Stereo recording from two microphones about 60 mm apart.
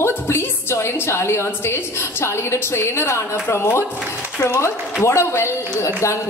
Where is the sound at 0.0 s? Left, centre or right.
Left.